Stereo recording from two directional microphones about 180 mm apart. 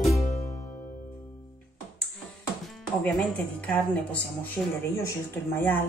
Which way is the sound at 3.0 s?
10° left (ahead or behind).